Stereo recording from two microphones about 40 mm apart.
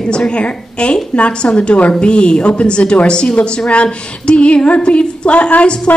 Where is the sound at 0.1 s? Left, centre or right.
Left.